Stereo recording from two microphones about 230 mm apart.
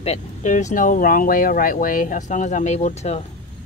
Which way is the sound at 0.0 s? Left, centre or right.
Left.